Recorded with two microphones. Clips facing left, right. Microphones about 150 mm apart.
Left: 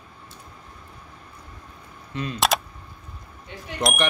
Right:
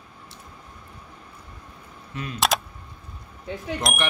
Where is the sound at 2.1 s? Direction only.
5° right (ahead or behind).